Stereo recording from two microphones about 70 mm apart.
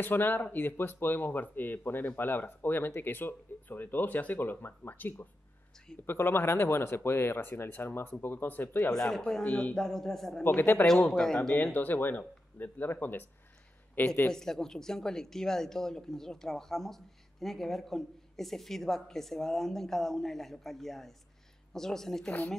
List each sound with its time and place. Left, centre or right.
0.0 s speech: left
8.9 s a man's voice: centre
9.4 s speech: centre
9.8 s a man's voice: centre
10.4 s speech: left
11.1 s a man's voice: centre
11.5 s speech: left
14.3 s a man's voice: centre